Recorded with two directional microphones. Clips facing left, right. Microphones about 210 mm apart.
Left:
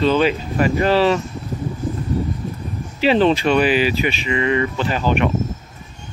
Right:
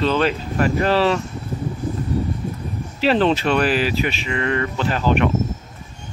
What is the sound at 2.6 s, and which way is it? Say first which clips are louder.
Speech: left 2 dB; centre (ahead or behind).